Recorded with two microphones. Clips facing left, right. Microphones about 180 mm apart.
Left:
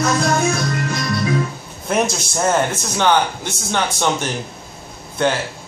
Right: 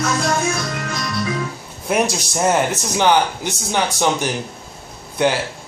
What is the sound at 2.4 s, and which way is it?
A man's voice, 15° right (ahead or behind).